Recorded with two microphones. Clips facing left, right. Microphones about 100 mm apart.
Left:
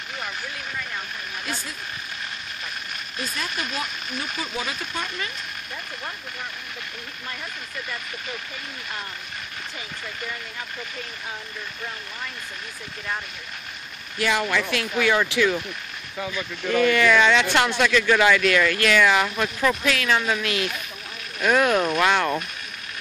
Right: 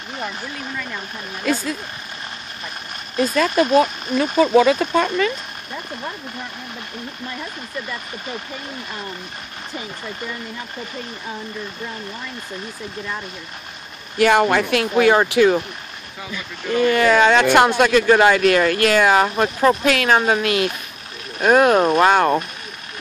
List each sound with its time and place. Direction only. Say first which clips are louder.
3.4 s speech: right 15 dB; 35° right (ahead or behind)
4.6 s speech: right 16 dB; 90° right
14.1 s speech: right 9 dB; 55° right (ahead or behind)
16.6 s speech: right 3 dB; 35° right (ahead or behind)
19.8 s speech: right 6 dB; 50° right (ahead or behind)